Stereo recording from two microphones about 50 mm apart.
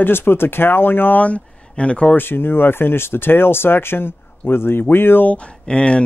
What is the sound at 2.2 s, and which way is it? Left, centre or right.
Speech, left.